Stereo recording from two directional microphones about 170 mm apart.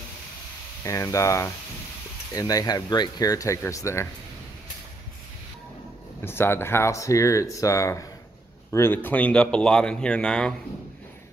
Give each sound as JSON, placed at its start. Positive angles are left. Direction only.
{"t": 0.8, "sound": "speech", "side_deg": 20}
{"t": 6.2, "sound": "a man's voice", "side_deg": 15}